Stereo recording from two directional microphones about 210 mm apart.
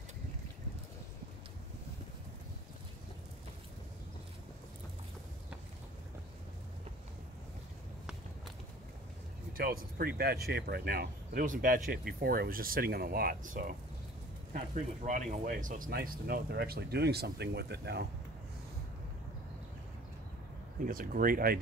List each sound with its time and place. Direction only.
9.5 s speech: 45° right (ahead or behind)
20.8 s speech: 40° right (ahead or behind)